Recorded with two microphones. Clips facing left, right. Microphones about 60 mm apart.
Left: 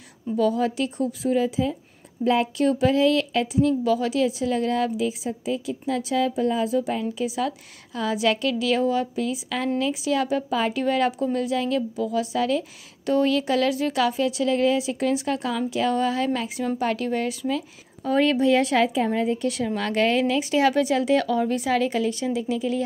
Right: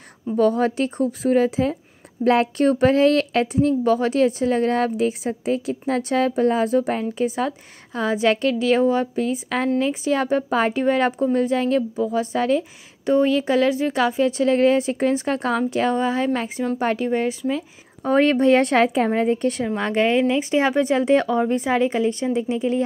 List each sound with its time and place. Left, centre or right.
0.4 s a woman's voice: right
3.6 s a woman's voice: right
15.9 s a woman's voice: right
18.0 s a woman's voice: right
19.7 s a woman's voice: right